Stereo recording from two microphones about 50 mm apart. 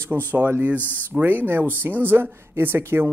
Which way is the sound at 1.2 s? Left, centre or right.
Right.